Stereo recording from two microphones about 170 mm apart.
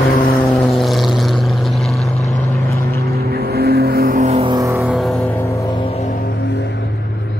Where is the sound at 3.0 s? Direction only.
65° right (ahead or behind).